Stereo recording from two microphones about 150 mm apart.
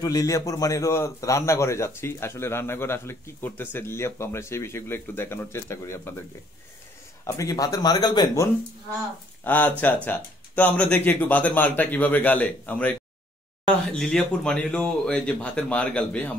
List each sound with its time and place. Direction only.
0.0 s a man's voice: 25° left (ahead or behind)
7.2 s a man's voice: 20° left (ahead or behind)
9.4 s a man's voice: 10° left (ahead or behind)